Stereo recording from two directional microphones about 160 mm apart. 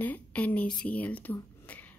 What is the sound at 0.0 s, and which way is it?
Speech, 10° left (ahead or behind).